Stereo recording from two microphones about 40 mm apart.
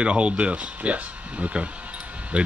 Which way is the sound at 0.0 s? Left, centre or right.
Right.